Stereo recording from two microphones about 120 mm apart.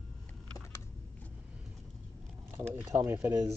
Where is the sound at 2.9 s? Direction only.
20° right (ahead or behind).